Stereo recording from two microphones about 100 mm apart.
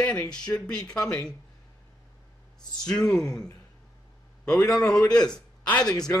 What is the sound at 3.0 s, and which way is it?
Speech, 5° left (ahead or behind).